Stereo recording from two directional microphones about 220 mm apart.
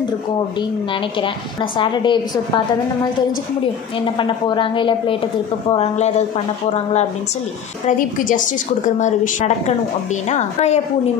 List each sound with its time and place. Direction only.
1.2 s a woman's voice: 20° left (ahead or behind)
4.0 s a woman's voice: 20° left (ahead or behind)
8.3 s a woman's voice: 35° left (ahead or behind)
10.3 s a woman's voice: 30° left (ahead or behind)